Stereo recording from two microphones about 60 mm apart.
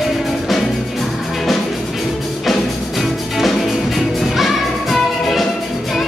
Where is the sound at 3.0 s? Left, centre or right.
Centre.